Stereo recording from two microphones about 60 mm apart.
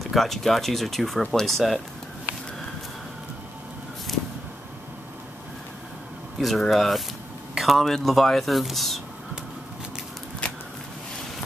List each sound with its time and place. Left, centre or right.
0.1 s speech: centre
6.4 s speech: centre
10.4 s a sound: centre